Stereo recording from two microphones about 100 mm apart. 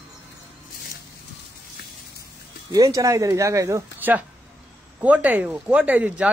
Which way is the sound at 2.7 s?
35° right (ahead or behind).